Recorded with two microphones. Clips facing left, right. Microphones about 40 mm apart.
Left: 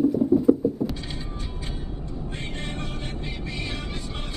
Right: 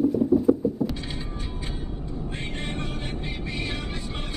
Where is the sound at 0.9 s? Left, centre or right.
Centre.